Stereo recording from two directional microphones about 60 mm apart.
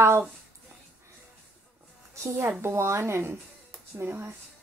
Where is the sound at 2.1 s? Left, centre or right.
Right.